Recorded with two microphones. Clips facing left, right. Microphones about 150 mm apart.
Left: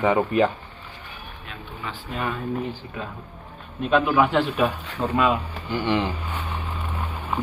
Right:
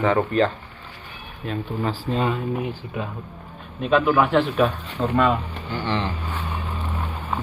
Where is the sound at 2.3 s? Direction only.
10° right (ahead or behind).